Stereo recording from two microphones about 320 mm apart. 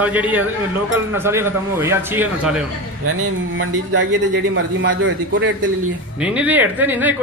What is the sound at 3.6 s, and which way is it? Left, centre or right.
A man's voice, right.